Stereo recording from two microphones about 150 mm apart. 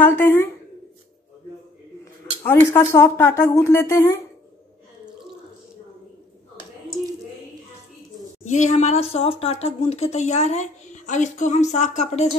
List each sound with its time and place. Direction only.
0.0 s speech: 15° left (ahead or behind)
2.4 s speech: 15° left (ahead or behind)
8.5 s speech: 50° left (ahead or behind)